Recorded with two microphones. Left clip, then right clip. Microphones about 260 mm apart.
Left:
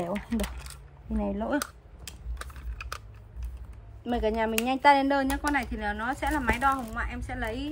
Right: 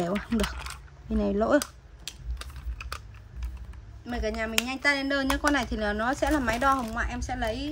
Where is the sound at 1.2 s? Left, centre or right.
Left.